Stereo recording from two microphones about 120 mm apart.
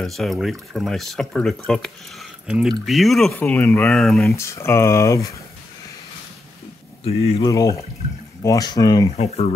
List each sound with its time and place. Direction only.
0.0 s speech: centre (ahead or behind)
2.4 s speech: 5° right (ahead or behind)
3.3 s speech: 15° left (ahead or behind)
3.9 s speech: centre (ahead or behind)
4.4 s speech: 25° left (ahead or behind)
7.1 s speech: 55° left (ahead or behind)
7.4 s speech: 30° left (ahead or behind)
9.1 s speech: 60° left (ahead or behind)